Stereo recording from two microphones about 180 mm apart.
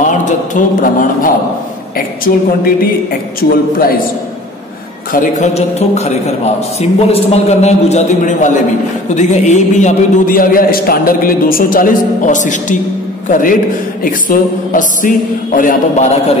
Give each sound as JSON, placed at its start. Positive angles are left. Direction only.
{"t": 0.0, "sound": "a sound", "side_deg": 45}
{"t": 2.0, "sound": "a man's voice", "side_deg": 55}
{"t": 5.1, "sound": "a man's voice", "side_deg": 45}